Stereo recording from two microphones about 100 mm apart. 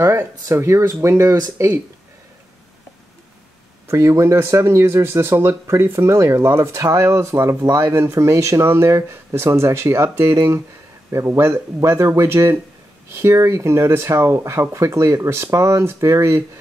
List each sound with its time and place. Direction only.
0.0 s speech: 30° right (ahead or behind)
3.9 s speech: 30° right (ahead or behind)